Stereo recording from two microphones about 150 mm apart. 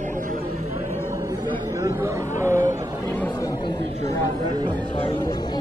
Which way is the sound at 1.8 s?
20° right (ahead or behind).